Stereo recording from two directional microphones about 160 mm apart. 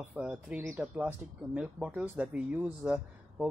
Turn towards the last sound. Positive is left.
turn(degrees=-5)  # may be behind; listen again after turning